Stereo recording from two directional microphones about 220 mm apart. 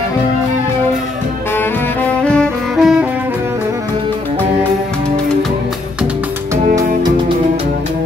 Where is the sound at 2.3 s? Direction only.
Centre (ahead or behind).